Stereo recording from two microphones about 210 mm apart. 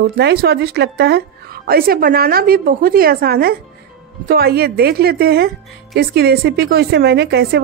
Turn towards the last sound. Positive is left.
turn(degrees=-50)  # may be behind; listen again after turning